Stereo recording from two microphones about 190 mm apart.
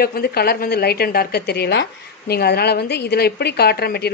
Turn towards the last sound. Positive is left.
turn(degrees=55)  # may be behind; listen again after turning